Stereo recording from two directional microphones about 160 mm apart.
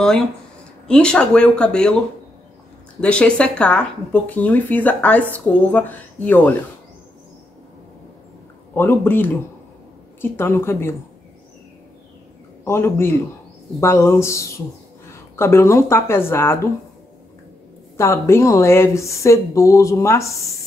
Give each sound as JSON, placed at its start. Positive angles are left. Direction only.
{"t": 0.8, "sound": "speech", "side_deg": 5}
{"t": 3.0, "sound": "speech", "side_deg": 5}
{"t": 8.7, "sound": "speech", "side_deg": 15}
{"t": 12.6, "sound": "speech", "side_deg": 15}
{"t": 17.9, "sound": "speech", "side_deg": 15}